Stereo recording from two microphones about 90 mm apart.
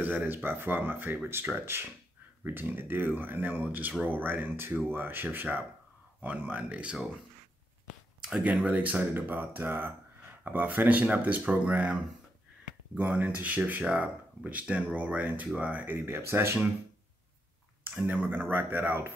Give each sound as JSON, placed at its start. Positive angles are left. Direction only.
{"t": 0.0, "sound": "speech", "side_deg": -20}
{"t": 8.2, "sound": "speech", "side_deg": -10}
{"t": 17.9, "sound": "speech", "side_deg": -15}